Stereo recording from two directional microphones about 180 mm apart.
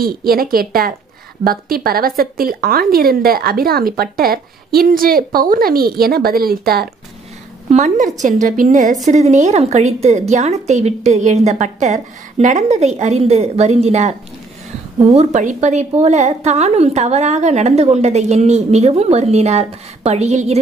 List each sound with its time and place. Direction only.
0.0 s speech: 55° right (ahead or behind)
7.7 s a woman's voice: 40° right (ahead or behind)